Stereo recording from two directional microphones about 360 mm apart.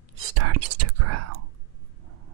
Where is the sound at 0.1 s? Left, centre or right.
Right.